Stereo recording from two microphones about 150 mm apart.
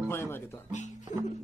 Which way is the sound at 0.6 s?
55° left (ahead or behind).